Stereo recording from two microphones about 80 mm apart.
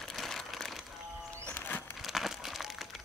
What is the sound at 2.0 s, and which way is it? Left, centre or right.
Crumpling, centre.